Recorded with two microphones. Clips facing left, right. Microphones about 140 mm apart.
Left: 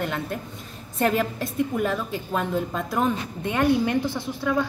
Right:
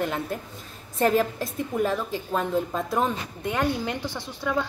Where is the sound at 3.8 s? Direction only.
20° right (ahead or behind).